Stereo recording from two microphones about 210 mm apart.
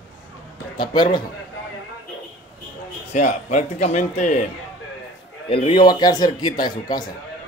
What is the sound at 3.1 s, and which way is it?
Speech, 35° left (ahead or behind).